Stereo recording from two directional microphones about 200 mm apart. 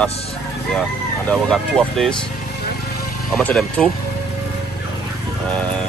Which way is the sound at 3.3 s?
Centre (ahead or behind).